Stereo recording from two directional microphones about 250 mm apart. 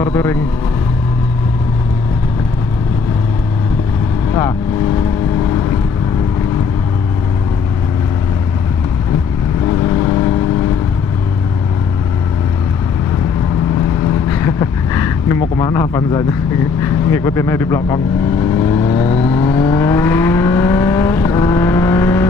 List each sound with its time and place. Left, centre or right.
0.0 s speech: centre
9.9 s vehicle: centre
14.4 s a sound: centre
16.8 s speech: centre
18.5 s vehicle: centre